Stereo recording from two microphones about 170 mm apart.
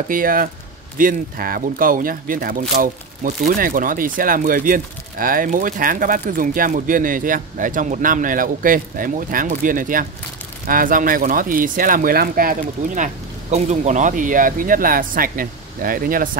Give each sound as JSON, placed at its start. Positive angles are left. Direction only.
{"t": 0.1, "sound": "speech", "side_deg": -55}